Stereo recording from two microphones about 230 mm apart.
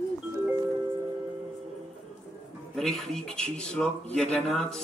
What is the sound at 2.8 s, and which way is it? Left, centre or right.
Speech, centre.